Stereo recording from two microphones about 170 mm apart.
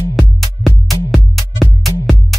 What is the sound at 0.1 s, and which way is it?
Music, centre (ahead or behind).